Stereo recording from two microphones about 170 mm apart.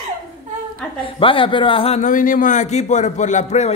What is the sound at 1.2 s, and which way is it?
A man's voice, 30° left (ahead or behind).